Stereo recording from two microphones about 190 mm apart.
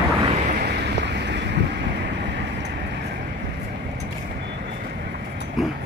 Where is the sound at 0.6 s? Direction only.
60° right (ahead or behind).